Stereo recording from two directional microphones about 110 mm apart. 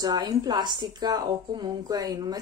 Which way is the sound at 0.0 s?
40° right (ahead or behind).